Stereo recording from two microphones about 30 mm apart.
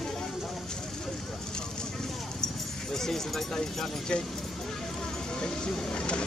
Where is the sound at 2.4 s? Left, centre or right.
Centre.